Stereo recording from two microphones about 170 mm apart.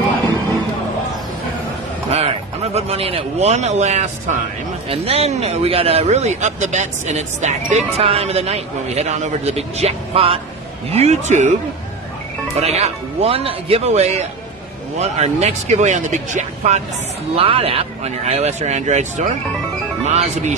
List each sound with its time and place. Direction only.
2.0 s speech: 40° right (ahead or behind)
12.5 s speech: 40° right (ahead or behind)